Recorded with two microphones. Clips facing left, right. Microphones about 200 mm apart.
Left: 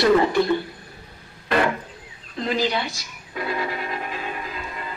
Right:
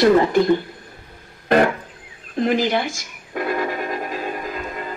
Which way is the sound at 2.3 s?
50° right (ahead or behind).